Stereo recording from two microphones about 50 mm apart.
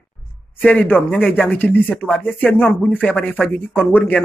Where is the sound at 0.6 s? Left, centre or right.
Left.